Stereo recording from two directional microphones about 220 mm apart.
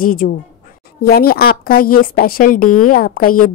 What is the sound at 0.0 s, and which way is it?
Speech, 40° left (ahead or behind).